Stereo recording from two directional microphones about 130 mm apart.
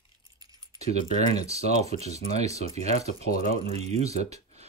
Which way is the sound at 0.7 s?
55° right (ahead or behind).